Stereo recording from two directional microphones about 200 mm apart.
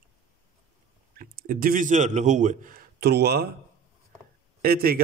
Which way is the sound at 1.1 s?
45° right (ahead or behind).